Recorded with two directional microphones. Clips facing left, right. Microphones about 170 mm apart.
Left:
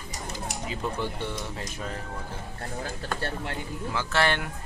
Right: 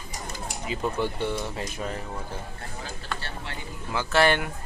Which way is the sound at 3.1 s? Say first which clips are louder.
Left 5 dB; 50° left (ahead or behind).